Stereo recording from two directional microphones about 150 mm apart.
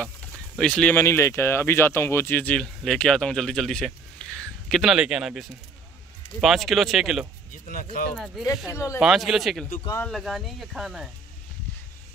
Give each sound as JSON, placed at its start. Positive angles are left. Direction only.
{"t": 0.6, "sound": "speech", "side_deg": 5}
{"t": 7.6, "sound": "speech", "side_deg": 65}
{"t": 8.6, "sound": "speech", "side_deg": 20}
{"t": 9.0, "sound": "speech", "side_deg": 0}